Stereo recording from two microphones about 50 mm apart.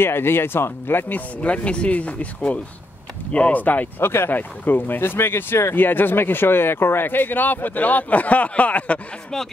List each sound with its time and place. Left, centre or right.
0.0 s speech: left
1.4 s speech: left
4.0 s speech: left
4.3 s speech: left
5.8 s speech: left